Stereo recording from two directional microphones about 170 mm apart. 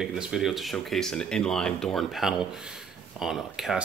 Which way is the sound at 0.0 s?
5° right (ahead or behind).